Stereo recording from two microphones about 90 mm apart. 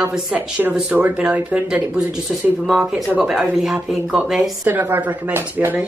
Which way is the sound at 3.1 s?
15° right (ahead or behind).